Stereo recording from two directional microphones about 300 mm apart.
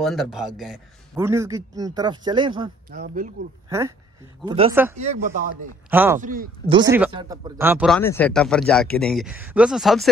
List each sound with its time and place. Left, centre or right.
0.0 s a man's voice: centre
2.9 s speech: right
3.6 s a man's voice: centre
5.9 s speech: centre
6.2 s speech: right
6.7 s speech: centre